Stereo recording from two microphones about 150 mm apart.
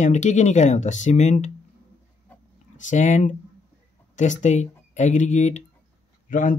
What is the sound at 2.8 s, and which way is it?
Speech, 55° left (ahead or behind).